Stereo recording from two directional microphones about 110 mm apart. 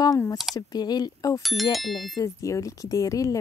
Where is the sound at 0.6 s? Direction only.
35° left (ahead or behind).